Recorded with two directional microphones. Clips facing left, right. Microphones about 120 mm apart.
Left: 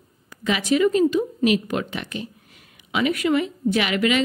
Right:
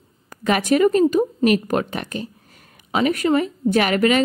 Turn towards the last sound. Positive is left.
turn(degrees=-45)  # may be behind; listen again after turning